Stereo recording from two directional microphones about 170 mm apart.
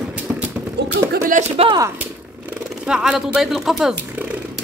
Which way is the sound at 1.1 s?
55° right (ahead or behind).